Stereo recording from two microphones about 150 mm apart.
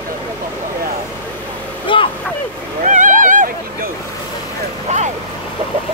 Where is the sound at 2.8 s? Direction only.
60° right (ahead or behind).